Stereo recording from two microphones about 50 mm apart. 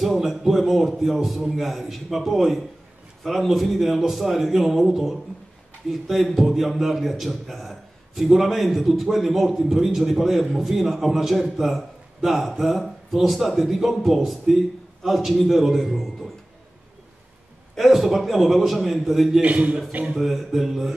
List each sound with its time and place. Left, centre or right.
0.0 s a man's voice: centre
17.7 s a man's voice: centre
19.4 s a man's voice: right
20.2 s a man's voice: centre